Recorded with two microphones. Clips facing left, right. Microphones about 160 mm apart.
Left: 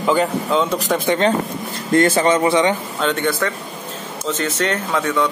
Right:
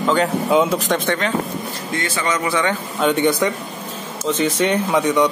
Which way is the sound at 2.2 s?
30° left (ahead or behind).